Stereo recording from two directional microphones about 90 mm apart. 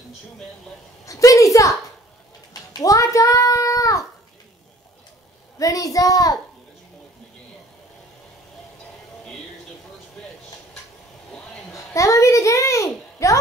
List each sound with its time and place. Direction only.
1.0 s a sound: 40° left (ahead or behind)
5.6 s a child's voice: 40° left (ahead or behind)
11.7 s a child's voice: 35° left (ahead or behind)